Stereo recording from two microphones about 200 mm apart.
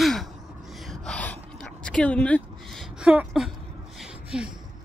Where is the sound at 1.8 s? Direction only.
5° left (ahead or behind).